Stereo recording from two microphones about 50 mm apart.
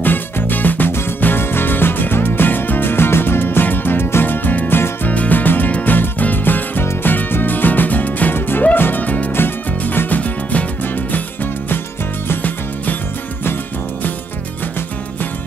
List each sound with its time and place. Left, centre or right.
0.0 s music: left
5.0 s music: left
9.3 s music: left